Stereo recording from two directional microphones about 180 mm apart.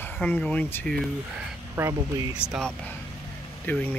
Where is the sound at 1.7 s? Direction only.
15° right (ahead or behind).